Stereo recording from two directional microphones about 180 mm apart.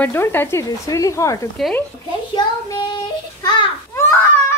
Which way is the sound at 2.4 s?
25° left (ahead or behind).